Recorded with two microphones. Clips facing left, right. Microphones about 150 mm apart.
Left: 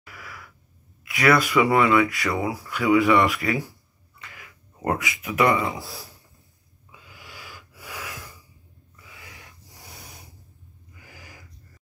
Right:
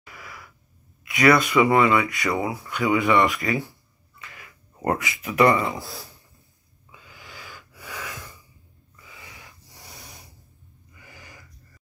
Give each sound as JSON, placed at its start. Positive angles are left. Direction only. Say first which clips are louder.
{"t": 1.0, "sound": "speech", "louder": "right 2 dB", "side_deg": 0}
{"t": 2.0, "sound": "speech", "louder": "even", "side_deg": 0}
{"t": 3.4, "sound": "speech", "louder": "even", "side_deg": -20}
{"t": 4.4, "sound": "speech", "louder": "right 1 dB", "side_deg": 5}
{"t": 6.9, "sound": "wheeze", "louder": "even", "side_deg": 0}
{"t": 11.0, "sound": "a sound", "louder": "even", "side_deg": 5}